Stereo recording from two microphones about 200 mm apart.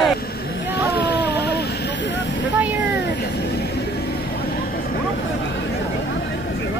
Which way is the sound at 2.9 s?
60° left (ahead or behind).